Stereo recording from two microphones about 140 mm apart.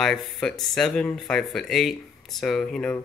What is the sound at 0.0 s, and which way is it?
Speech, centre (ahead or behind).